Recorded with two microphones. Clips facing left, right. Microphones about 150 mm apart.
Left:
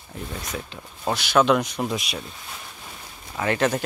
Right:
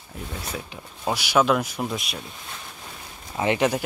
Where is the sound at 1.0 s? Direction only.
10° right (ahead or behind).